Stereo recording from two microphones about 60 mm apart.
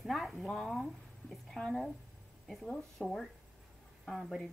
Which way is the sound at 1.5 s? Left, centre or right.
Centre.